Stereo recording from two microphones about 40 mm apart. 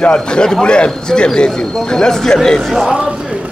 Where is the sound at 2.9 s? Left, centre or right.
Right.